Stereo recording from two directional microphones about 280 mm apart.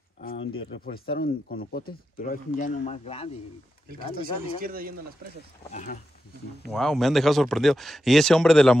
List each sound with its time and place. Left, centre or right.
0.2 s a sound: left
0.7 s speech: left
4.6 s speech: right
5.7 s speech: left
6.7 s speech: centre